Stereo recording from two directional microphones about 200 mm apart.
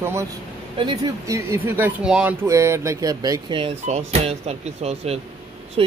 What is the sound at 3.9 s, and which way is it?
Speech, 35° right (ahead or behind).